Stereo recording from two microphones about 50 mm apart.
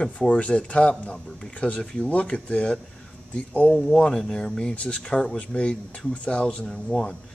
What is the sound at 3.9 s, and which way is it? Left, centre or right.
Speech, centre.